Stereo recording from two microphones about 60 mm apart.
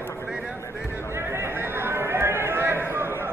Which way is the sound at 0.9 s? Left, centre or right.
Left.